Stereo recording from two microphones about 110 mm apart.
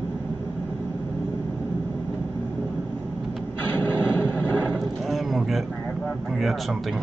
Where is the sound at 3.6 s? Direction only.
15° left (ahead or behind).